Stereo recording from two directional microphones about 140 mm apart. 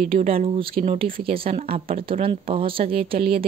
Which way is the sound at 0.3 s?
45° right (ahead or behind).